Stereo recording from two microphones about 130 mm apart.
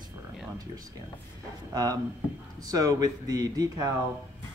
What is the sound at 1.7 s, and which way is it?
Speech, 30° right (ahead or behind).